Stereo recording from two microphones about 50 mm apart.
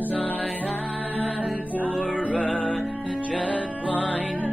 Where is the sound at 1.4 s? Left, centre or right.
Right.